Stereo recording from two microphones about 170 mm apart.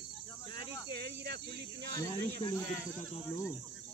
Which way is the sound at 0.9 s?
75° right (ahead or behind).